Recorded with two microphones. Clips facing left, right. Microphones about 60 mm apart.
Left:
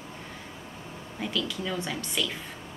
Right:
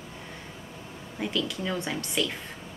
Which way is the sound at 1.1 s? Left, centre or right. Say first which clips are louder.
Right 1 dB; centre.